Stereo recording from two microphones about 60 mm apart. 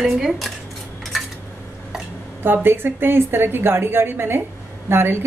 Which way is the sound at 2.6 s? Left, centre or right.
Right.